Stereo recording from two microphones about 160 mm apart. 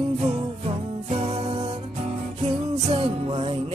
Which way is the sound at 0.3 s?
40° right (ahead or behind).